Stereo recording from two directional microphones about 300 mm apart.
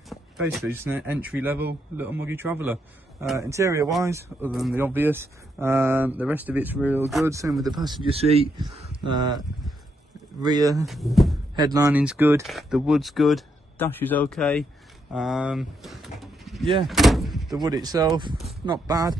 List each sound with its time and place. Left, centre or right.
0.1 s speech: centre
10.4 s speech: centre
10.9 s speech: centre
11.5 s speech: centre
17.6 s speech: centre